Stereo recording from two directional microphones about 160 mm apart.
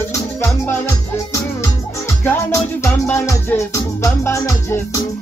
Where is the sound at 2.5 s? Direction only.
20° left (ahead or behind).